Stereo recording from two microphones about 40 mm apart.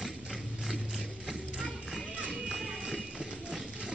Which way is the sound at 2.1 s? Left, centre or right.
Right.